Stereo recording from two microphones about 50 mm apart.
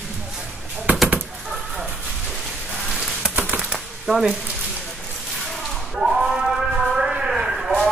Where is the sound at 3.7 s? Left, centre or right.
Centre.